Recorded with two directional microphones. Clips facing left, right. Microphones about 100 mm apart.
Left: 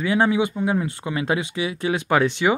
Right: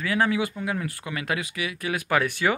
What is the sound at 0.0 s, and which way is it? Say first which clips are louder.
Speech: left 4 dB; 25° left (ahead or behind).